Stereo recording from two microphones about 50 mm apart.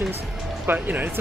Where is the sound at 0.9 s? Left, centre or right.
Right.